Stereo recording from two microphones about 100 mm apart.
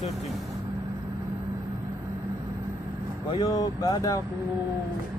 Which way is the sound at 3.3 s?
45° left (ahead or behind).